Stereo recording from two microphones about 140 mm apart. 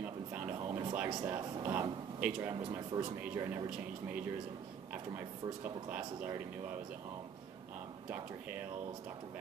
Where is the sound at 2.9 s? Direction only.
35° right (ahead or behind).